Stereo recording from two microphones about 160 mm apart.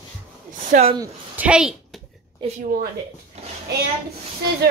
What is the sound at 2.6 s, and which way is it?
Speech, 65° right (ahead or behind).